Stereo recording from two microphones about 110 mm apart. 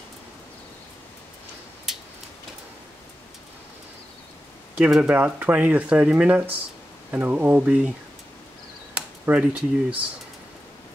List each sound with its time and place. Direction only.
4.7 s speech: 10° right (ahead or behind)
8.9 s speech: 10° right (ahead or behind)